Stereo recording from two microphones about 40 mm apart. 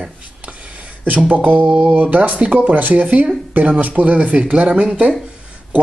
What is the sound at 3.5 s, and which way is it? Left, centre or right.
Speech, right.